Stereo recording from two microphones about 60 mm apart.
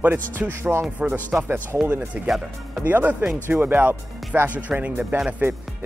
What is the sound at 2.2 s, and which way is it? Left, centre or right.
Speech, centre.